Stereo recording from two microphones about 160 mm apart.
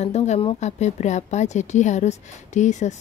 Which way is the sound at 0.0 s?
45° left (ahead or behind).